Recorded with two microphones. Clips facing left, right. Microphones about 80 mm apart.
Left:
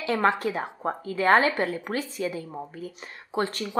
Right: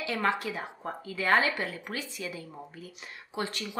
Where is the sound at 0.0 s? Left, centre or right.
Left.